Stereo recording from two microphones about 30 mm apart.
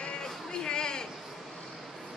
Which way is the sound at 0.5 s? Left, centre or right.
Left.